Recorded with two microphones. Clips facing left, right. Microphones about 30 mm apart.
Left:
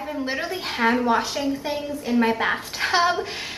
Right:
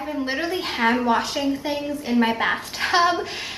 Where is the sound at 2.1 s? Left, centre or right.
Centre.